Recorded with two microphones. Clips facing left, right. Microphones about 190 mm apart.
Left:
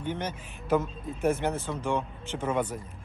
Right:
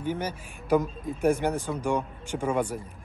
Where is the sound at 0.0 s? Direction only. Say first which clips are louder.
Right 2 dB; 10° right (ahead or behind).